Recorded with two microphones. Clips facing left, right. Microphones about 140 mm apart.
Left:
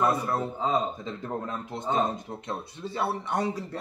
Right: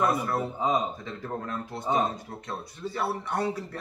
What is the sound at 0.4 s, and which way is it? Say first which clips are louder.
Speech: even; 15° right (ahead or behind).